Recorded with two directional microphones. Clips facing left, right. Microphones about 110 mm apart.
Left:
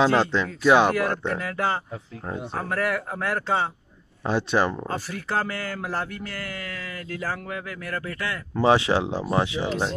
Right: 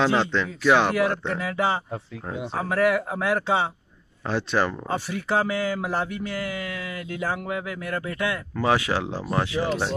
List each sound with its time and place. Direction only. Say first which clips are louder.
0.0 s speech: left 2 dB; 5° left (ahead or behind)
0.9 s speech: right 1 dB; 5° right (ahead or behind)
4.2 s speech: left 1 dB; 15° left (ahead or behind)
4.8 s speech: right 3 dB; 10° right (ahead or behind)
8.5 s speech: left 4 dB; 25° left (ahead or behind)